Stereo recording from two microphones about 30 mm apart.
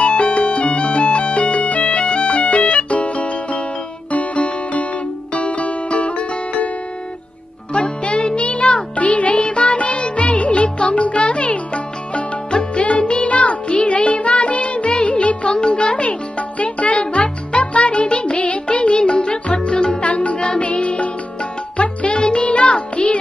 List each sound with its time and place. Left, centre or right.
0.0 s music: left
1.9 s music: left
7.7 s music: left
9.4 s music: left
15.5 s music: left
20.1 s music: left
20.3 s music: left
22.1 s music: left